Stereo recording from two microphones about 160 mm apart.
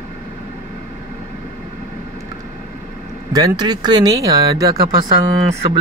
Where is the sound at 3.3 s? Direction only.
25° right (ahead or behind).